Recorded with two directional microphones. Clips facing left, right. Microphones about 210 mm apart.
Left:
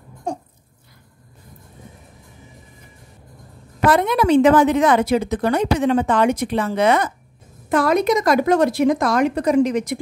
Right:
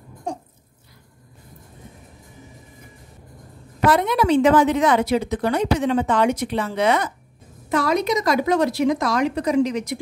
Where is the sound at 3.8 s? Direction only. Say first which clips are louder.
Left 2 dB; 55° left (ahead or behind).